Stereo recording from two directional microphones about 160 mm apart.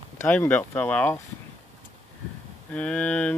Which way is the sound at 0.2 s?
10° left (ahead or behind).